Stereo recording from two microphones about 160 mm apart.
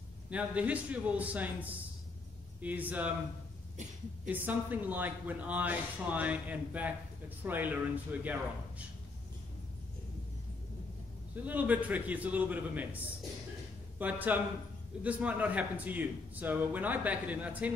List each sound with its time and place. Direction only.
0.3 s speech: 10° right (ahead or behind)
3.7 s cough: 50° right (ahead or behind)
4.3 s speech: 10° right (ahead or behind)
11.4 s speech: 10° right (ahead or behind)